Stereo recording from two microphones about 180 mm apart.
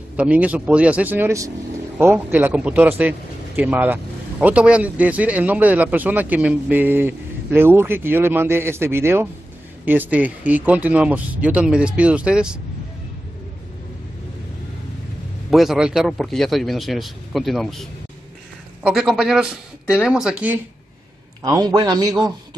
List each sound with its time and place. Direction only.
0.2 s a man's voice: 10° right (ahead or behind)
15.5 s a man's voice: centre (ahead or behind)
21.5 s a man's voice: 20° right (ahead or behind)